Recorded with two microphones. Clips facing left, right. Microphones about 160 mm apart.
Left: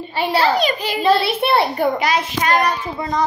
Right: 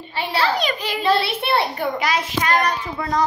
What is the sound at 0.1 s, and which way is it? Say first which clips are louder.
A child's voice: left 4 dB; 40° left (ahead or behind).